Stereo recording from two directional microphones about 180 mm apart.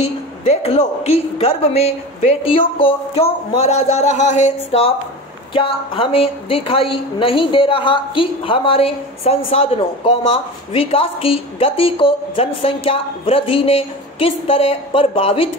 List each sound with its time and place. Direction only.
0.0 s a woman's voice: 35° left (ahead or behind)